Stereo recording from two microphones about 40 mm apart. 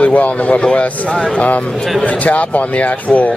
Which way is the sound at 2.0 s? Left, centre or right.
Left.